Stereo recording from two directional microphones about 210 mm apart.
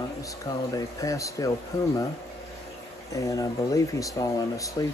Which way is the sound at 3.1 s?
15° left (ahead or behind).